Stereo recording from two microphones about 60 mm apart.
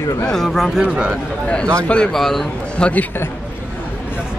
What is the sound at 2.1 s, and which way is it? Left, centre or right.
Speech, centre.